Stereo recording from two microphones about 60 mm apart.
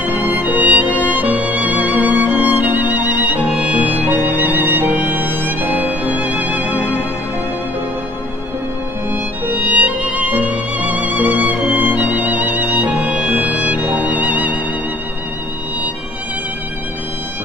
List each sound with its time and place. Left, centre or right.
0.0 s music: right
9.1 s music: right